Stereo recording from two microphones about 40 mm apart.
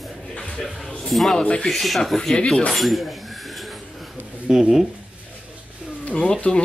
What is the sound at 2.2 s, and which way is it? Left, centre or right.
Speech, left.